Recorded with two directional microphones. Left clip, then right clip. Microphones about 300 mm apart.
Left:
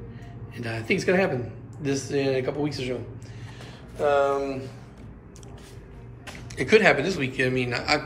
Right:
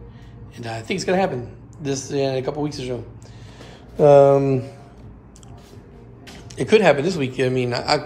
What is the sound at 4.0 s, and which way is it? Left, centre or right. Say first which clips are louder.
Speech: right 10 dB; right.